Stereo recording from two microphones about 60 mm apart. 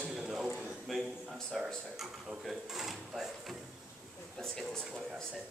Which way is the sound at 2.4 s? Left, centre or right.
Centre.